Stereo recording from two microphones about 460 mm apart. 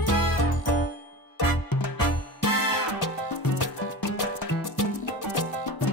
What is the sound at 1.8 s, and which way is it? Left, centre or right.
Music, left.